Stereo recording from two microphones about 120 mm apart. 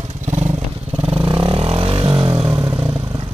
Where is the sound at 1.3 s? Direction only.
50° right (ahead or behind).